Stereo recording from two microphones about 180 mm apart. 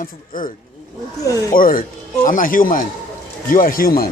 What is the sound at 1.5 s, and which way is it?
Speech, 50° left (ahead or behind).